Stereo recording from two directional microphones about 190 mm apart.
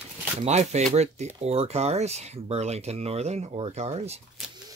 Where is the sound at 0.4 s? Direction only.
35° right (ahead or behind).